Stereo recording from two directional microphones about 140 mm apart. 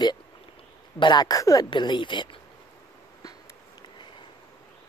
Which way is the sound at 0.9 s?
30° left (ahead or behind).